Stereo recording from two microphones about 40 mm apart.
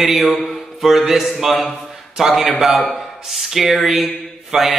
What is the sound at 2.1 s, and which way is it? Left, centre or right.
Mantra, centre.